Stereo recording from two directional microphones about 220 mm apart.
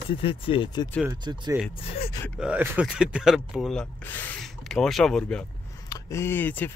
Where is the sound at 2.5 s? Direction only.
5° right (ahead or behind).